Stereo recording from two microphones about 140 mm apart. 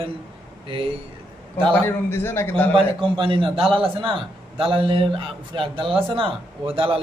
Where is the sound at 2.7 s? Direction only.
40° right (ahead or behind).